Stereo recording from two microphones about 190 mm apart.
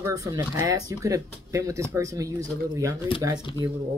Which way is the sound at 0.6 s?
20° right (ahead or behind).